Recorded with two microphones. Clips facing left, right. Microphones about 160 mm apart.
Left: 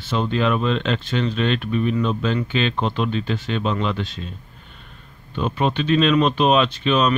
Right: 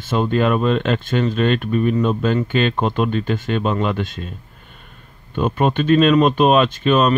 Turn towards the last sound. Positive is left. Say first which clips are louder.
# right 3 dB
turn(degrees=-45)  # may be behind; listen again after turning